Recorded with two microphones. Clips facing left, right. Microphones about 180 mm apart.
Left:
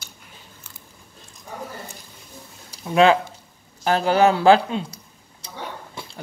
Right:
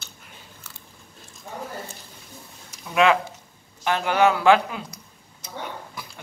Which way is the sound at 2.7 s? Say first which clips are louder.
Left 4 dB; 30° left (ahead or behind).